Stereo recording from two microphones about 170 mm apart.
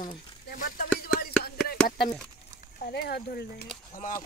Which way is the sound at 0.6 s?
55° left (ahead or behind).